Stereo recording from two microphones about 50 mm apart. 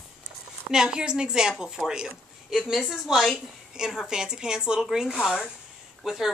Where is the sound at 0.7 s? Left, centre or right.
Centre.